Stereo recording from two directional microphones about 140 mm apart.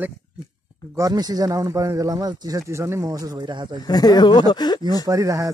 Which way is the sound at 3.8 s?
30° left (ahead or behind).